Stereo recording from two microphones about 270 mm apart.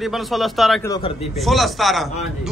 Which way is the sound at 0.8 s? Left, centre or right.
Centre.